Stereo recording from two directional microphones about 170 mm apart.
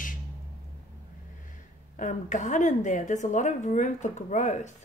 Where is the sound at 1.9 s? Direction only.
45° left (ahead or behind).